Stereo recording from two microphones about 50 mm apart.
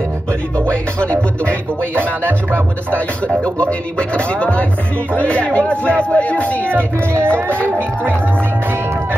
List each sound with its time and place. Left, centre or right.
0.7 s speech: left
2.0 s speech: right
3.4 s speech: left
6.7 s speech: right